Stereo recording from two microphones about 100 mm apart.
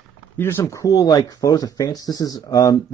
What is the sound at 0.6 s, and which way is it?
Speech, 35° left (ahead or behind).